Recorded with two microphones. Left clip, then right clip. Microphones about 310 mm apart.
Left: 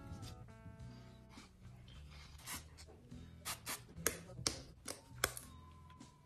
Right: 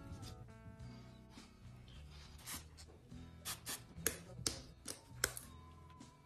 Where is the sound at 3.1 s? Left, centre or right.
Centre.